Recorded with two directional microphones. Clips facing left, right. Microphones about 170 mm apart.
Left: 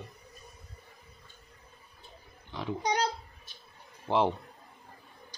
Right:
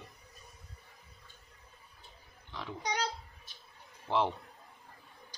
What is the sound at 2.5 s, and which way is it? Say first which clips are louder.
Pig: left 7 dB; 20° left (ahead or behind).